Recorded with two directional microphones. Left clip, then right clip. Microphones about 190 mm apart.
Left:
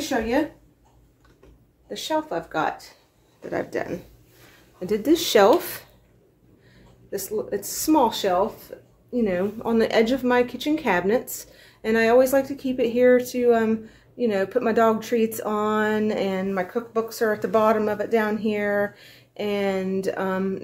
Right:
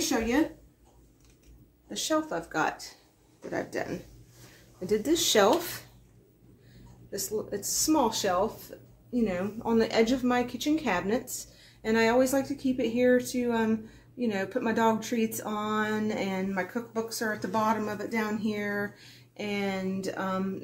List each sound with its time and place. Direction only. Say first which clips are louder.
1.9 s speech: left 3 dB; 10° left (ahead or behind)
3.4 s speech: left 5 dB; 20° left (ahead or behind)
7.1 s speech: left 6 dB; 30° left (ahead or behind)